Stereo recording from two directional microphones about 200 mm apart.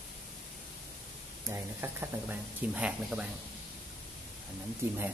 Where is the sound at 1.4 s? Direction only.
10° right (ahead or behind).